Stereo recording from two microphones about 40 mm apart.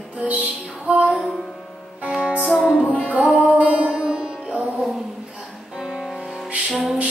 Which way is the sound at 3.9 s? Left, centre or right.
Right.